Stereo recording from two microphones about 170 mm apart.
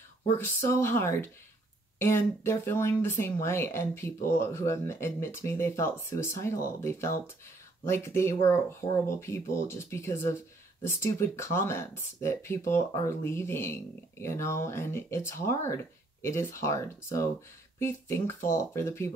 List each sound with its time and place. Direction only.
0.4 s speech: 15° left (ahead or behind)